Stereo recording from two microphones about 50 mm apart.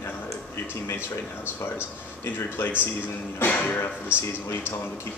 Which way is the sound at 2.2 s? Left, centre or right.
Left.